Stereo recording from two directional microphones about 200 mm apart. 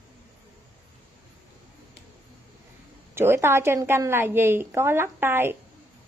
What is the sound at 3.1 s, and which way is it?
A woman's voice, 10° right (ahead or behind).